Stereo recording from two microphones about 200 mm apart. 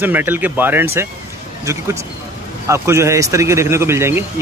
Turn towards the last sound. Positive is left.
turn(degrees=-10)  # may be behind; listen again after turning